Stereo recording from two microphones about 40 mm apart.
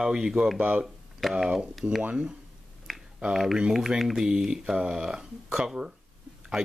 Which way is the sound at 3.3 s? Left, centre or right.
Centre.